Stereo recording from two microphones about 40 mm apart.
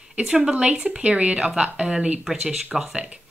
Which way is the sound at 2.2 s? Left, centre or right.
Centre.